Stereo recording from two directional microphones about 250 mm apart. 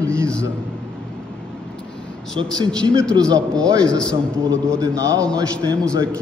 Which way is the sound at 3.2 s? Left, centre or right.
Centre.